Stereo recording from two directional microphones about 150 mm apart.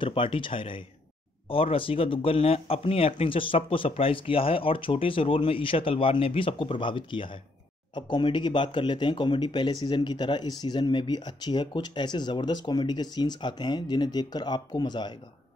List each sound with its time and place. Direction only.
0.0 s speech: 35° left (ahead or behind)